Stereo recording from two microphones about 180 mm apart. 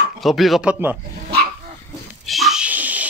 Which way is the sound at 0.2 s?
Centre (ahead or behind).